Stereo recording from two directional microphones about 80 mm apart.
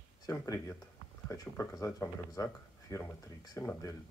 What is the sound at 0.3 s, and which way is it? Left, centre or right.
Speech, left.